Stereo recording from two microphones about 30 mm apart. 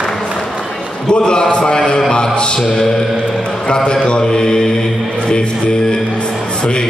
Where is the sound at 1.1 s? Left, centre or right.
Left.